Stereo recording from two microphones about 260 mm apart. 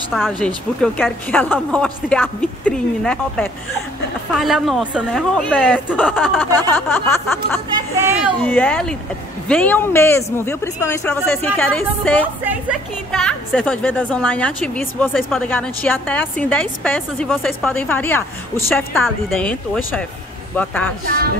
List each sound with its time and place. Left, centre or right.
0.1 s a woman's voice: centre
21.0 s speech: right